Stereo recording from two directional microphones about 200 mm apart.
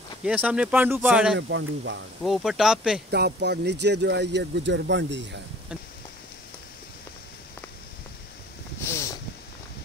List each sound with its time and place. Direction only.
0.2 s speech: 5° right (ahead or behind)
1.5 s speech: 65° right (ahead or behind)
2.2 s speech: centre (ahead or behind)
3.1 s speech: 55° right (ahead or behind)
8.8 s a sound: 15° left (ahead or behind)